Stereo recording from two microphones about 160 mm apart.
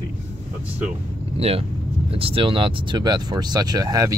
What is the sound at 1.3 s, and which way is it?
Speech, 35° right (ahead or behind).